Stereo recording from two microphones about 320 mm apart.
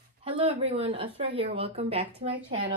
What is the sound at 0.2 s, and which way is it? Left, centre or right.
A woman's voice, centre.